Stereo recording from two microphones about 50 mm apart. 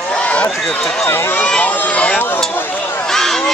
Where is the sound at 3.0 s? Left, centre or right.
Centre.